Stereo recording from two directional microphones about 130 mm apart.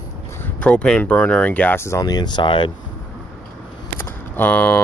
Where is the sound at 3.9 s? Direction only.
15° left (ahead or behind).